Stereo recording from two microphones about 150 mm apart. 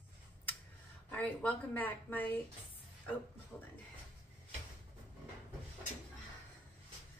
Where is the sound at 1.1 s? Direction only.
10° left (ahead or behind).